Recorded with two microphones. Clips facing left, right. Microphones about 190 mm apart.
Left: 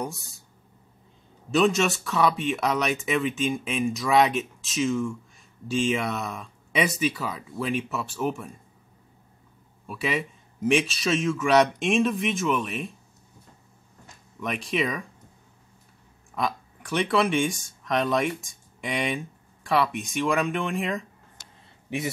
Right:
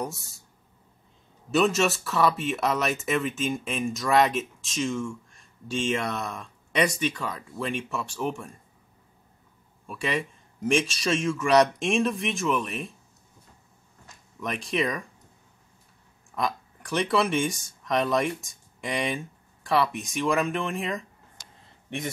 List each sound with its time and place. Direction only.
0.0 s speech: centre (ahead or behind)
1.5 s speech: centre (ahead or behind)
9.8 s speech: 5° left (ahead or behind)
14.4 s speech: centre (ahead or behind)
16.3 s speech: centre (ahead or behind)